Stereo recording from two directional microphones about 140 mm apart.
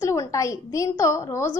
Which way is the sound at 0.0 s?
20° left (ahead or behind).